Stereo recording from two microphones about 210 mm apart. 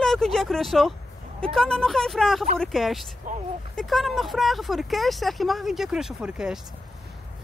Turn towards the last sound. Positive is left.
turn(degrees=-5)  # may be behind; listen again after turning